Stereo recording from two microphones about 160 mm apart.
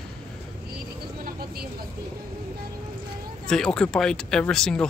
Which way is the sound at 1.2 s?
70° right (ahead or behind).